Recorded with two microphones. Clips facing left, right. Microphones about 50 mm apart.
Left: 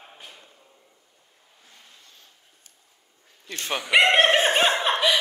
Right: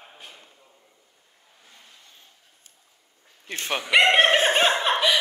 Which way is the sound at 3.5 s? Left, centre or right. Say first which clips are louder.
Right 1 dB; right.